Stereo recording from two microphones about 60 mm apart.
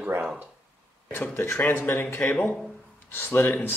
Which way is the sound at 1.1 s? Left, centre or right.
Left.